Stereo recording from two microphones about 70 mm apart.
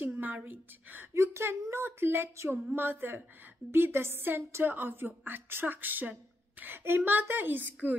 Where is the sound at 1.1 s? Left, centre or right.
Right.